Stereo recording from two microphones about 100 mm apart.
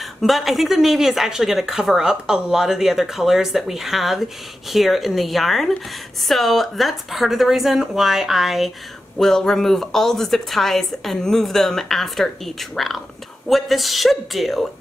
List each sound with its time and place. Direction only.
0.0 s speech: centre (ahead or behind)